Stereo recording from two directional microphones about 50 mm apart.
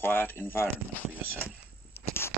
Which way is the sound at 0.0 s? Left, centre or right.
Left.